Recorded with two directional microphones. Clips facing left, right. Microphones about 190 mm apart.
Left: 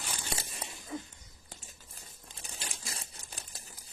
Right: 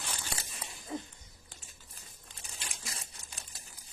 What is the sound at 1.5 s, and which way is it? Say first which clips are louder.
Crumpling: left 6 dB; 40° left (ahead or behind).